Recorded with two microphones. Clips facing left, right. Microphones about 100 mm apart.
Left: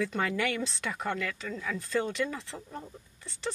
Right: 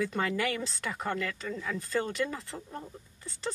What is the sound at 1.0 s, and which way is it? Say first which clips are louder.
Speech: right 1 dB; 35° right (ahead or behind).